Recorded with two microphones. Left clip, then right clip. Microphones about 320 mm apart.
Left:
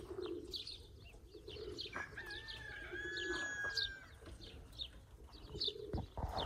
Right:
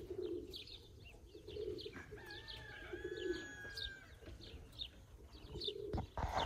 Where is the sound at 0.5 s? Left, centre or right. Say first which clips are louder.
Left 5 dB; centre.